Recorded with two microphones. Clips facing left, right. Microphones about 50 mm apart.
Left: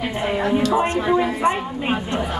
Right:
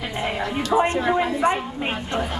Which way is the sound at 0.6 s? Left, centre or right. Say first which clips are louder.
Right 1 dB; right.